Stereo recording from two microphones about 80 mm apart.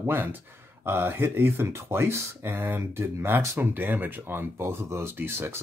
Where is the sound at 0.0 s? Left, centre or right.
Right.